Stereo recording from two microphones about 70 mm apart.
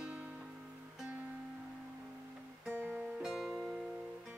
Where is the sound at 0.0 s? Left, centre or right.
Centre.